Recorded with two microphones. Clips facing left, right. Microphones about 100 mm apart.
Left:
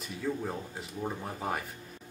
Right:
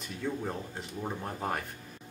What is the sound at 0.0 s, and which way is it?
Speech, centre (ahead or behind).